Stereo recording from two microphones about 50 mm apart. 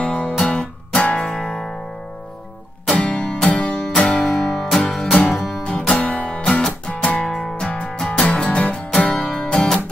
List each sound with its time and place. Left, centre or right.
0.0 s music: centre
2.9 s music: centre
4.4 s music: centre
5.6 s music: left
7.2 s music: centre